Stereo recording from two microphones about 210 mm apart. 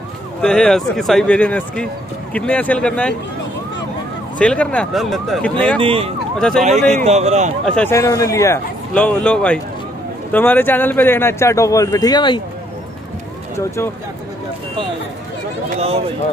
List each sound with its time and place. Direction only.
0.4 s speech: 5° left (ahead or behind)
4.4 s speech: 5° left (ahead or behind)
5.8 s speech: 25° right (ahead or behind)
6.3 s speech: 5° left (ahead or behind)
6.9 s speech: 30° right (ahead or behind)
7.6 s a man's voice: 5° left (ahead or behind)